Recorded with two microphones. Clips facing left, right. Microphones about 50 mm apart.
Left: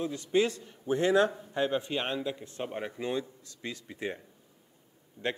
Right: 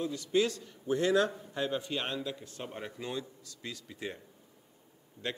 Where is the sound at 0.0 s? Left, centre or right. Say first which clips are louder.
Left 2 dB; left.